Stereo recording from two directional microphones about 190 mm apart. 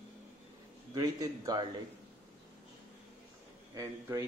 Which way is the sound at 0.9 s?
20° right (ahead or behind).